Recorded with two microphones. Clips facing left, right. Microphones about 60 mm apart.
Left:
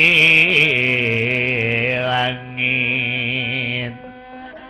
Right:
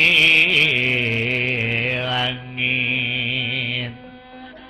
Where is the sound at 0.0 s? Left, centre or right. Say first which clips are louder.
Left 2 dB; centre.